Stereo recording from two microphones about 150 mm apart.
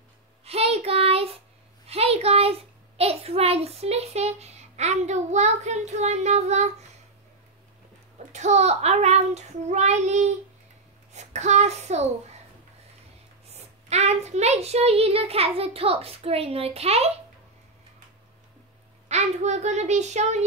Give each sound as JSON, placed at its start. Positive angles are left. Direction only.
{"t": 0.5, "sound": "child singing", "side_deg": -40}
{"t": 1.9, "sound": "a sound", "side_deg": -45}
{"t": 8.3, "sound": "child singing", "side_deg": -50}
{"t": 11.1, "sound": "a woman's voice", "side_deg": -50}
{"t": 13.8, "sound": "a child's voice", "side_deg": -45}
{"t": 19.0, "sound": "child singing", "side_deg": -50}